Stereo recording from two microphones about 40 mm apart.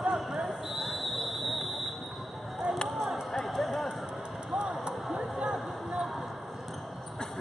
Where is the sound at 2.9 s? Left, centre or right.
Centre.